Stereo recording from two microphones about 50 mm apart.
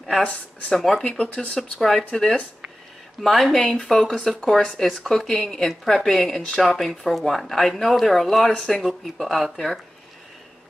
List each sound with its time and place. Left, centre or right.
0.2 s speech: centre
0.7 s speech: centre
1.0 s speech: centre
1.5 s speech: centre
3.2 s speech: centre